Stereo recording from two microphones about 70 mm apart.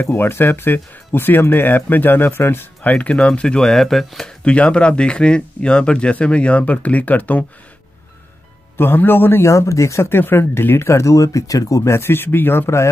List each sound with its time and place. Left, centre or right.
0.0 s speech: left; by 4.3 s centre
4.5 s speech: centre
8.7 s speech: left
10.0 s speech: left